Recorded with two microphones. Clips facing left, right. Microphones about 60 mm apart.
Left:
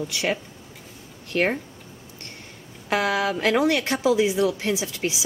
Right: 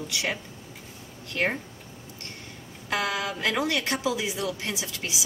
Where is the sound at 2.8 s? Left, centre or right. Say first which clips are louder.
Left 6 dB; left.